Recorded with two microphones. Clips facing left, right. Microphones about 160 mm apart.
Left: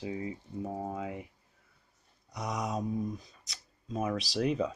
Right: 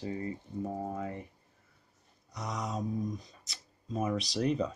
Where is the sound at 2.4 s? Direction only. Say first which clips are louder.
Left 2 dB; 15° left (ahead or behind).